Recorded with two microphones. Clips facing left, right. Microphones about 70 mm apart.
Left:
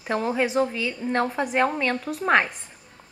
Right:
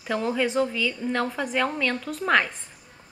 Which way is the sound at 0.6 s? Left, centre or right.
Left.